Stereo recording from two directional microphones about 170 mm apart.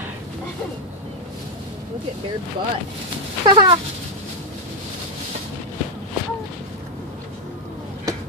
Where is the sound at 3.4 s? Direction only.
25° right (ahead or behind).